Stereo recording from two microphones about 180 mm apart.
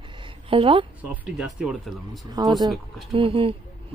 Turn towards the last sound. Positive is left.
turn(degrees=-30)  # may be behind; listen again after turning